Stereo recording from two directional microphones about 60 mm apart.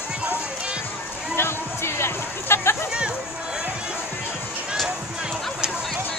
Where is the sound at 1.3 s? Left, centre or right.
Left.